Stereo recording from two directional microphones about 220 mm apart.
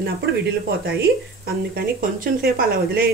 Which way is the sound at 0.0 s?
50° right (ahead or behind).